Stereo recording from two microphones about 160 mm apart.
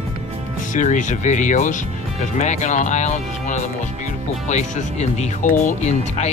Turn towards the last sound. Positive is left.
turn(degrees=45)  # may be behind; listen again after turning